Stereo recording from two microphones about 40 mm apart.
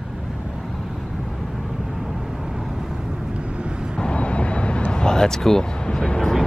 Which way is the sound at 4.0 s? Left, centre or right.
Left.